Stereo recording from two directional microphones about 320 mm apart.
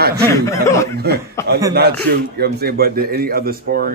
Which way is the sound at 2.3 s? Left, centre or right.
Right.